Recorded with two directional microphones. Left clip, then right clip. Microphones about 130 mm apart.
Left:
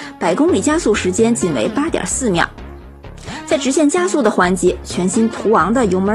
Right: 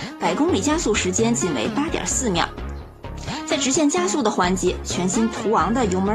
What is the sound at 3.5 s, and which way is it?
Speech, 45° left (ahead or behind).